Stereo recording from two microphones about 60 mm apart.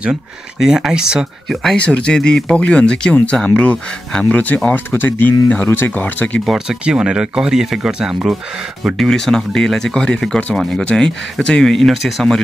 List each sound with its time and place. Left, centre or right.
0.6 s speech: centre
1.5 s speech: centre
1.8 s speech: centre
4.3 s speech: left
6.4 s speech: centre
6.8 s speech: centre
8.9 s speech: centre